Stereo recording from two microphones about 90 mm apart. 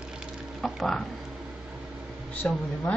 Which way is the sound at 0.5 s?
Centre (ahead or behind).